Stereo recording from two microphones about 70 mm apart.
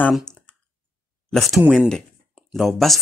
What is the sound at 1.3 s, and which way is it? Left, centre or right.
Speech, centre.